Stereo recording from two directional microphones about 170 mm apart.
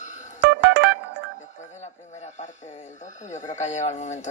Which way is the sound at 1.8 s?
40° left (ahead or behind).